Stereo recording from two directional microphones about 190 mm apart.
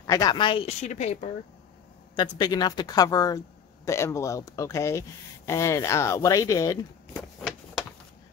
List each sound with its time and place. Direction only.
0.0 s speech: 20° left (ahead or behind); by 1.3 s 35° left (ahead or behind)
2.1 s speech: 20° left (ahead or behind)
7.2 s a sound: centre (ahead or behind)